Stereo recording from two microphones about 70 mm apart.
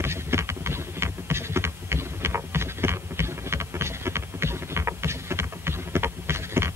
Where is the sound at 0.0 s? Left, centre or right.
Right.